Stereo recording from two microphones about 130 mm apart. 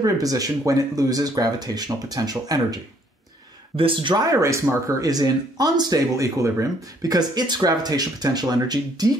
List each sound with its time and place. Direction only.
0.0 s speech: 25° right (ahead or behind)
3.7 s speech: 40° right (ahead or behind)